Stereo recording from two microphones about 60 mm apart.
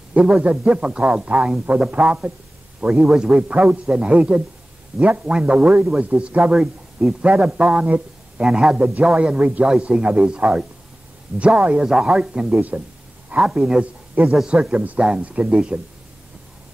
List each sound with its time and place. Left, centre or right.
0.1 s a man's voice: centre
13.4 s a man's voice: centre
14.2 s speech: right
14.5 s a man's voice: centre